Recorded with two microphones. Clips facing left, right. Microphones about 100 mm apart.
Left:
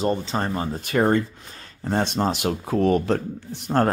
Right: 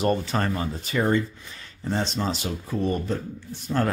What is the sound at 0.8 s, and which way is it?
Speech, 55° left (ahead or behind).